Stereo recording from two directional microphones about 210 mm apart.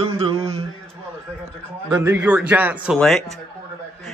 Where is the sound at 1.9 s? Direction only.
10° right (ahead or behind).